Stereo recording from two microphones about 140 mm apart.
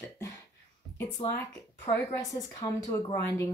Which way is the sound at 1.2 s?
45° left (ahead or behind).